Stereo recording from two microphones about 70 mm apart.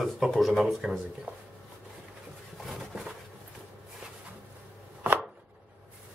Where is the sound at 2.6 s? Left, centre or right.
Centre.